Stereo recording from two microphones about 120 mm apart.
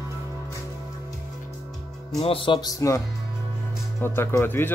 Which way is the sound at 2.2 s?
50° left (ahead or behind).